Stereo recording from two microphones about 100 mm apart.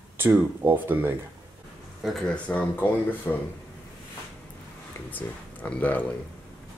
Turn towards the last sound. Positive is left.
turn(degrees=15)  # may be behind; listen again after turning